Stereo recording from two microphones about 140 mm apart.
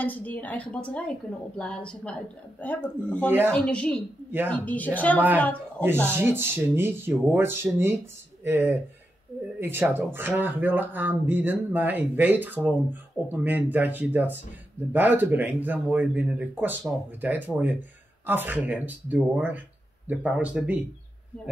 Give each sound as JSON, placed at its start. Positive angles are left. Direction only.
{"t": 0.0, "sound": "a woman's voice", "side_deg": 10}
{"t": 3.3, "sound": "speech", "side_deg": -15}
{"t": 3.5, "sound": "a woman's voice", "side_deg": 5}
{"t": 6.0, "sound": "speech", "side_deg": -15}